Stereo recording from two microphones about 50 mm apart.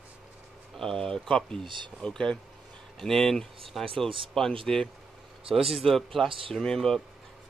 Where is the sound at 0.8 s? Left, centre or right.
Centre.